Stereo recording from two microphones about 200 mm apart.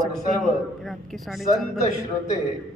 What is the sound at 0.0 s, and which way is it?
A man's voice, centre (ahead or behind).